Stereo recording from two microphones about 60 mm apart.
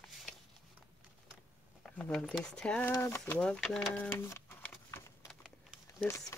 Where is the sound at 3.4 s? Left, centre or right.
Centre.